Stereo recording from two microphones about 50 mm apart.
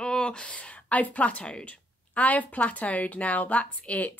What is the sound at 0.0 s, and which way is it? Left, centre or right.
Speech, centre.